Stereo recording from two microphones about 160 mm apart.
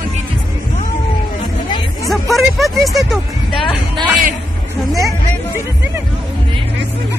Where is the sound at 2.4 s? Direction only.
Centre (ahead or behind).